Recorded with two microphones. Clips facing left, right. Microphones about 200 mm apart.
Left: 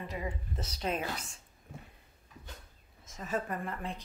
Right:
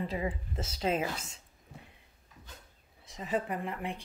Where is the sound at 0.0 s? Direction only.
25° right (ahead or behind).